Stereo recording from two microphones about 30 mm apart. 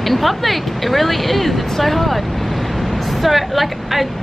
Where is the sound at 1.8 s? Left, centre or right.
Centre.